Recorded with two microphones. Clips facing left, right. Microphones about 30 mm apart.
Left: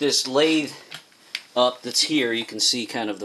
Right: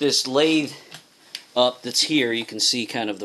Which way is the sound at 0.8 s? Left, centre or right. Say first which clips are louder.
Left 3 dB; left.